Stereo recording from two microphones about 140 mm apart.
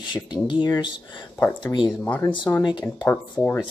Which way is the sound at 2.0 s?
15° left (ahead or behind).